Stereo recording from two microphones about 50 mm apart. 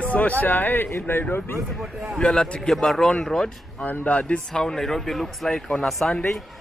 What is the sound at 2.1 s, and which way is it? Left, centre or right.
Speech, centre.